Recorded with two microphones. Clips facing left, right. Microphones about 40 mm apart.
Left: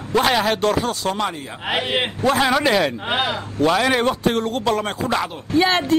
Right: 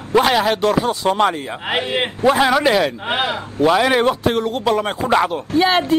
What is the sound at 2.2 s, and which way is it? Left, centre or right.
Speech, centre.